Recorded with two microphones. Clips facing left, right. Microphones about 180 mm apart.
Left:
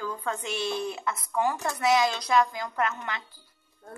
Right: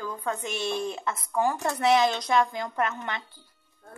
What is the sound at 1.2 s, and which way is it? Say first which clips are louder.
A woman's voice: right 2 dB; 25° right (ahead or behind).